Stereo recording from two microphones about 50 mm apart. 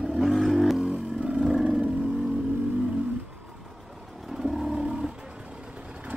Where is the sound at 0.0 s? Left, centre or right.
Centre.